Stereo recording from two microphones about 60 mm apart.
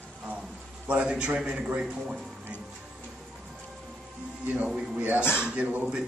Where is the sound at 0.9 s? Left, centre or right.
Centre.